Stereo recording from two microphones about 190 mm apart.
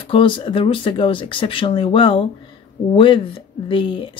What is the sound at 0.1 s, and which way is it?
Speech, 25° left (ahead or behind).